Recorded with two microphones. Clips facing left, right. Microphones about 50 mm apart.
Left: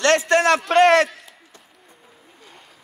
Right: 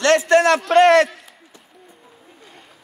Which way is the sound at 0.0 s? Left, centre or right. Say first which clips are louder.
Right 2 dB; left.